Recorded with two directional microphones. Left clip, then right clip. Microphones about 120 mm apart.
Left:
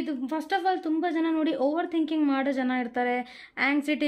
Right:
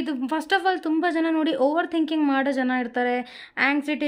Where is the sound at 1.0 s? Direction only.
30° right (ahead or behind).